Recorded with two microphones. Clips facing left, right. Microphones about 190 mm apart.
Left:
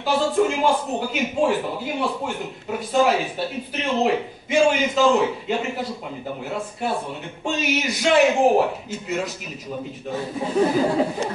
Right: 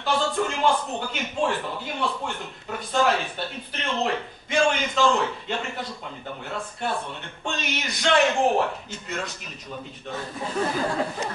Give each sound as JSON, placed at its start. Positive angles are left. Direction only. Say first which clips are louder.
{"t": 0.0, "sound": "a man's voice", "louder": "left 5 dB", "side_deg": 5}